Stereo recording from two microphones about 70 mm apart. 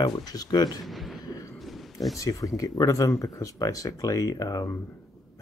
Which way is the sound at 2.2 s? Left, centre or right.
Left.